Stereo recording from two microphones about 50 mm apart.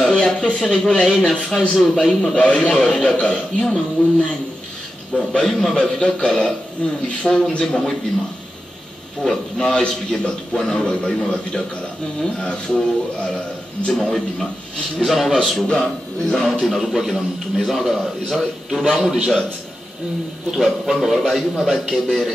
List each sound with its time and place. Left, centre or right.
0.1 s a man's voice: centre
2.3 s a man's voice: left
3.6 s a man's voice: centre
5.1 s a man's voice: centre
5.5 s a man's voice: centre
5.8 s a man's voice: centre
9.2 s a man's voice: centre
12.2 s a man's voice: centre
13.9 s a man's voice: centre
15.6 s a man's voice: centre
16.3 s a man's voice: centre
20.5 s a man's voice: centre